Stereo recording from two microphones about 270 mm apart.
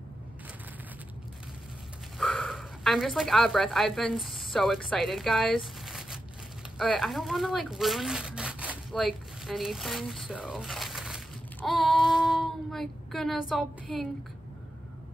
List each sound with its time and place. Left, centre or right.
2.1 s speech: centre